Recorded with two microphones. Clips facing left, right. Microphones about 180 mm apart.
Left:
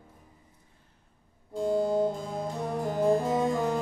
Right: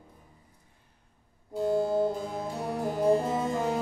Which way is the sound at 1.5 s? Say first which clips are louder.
Even; 5° right (ahead or behind).